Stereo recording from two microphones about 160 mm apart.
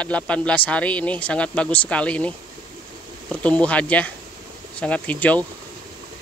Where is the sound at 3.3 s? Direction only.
5° left (ahead or behind).